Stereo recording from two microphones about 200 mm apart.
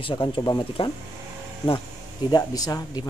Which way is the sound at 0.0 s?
25° left (ahead or behind).